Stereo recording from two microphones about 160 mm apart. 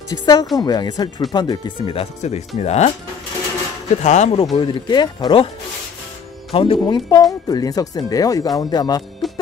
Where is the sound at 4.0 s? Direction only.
45° left (ahead or behind).